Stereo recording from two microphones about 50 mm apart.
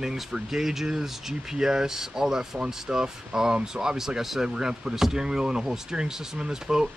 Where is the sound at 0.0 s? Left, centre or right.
Centre.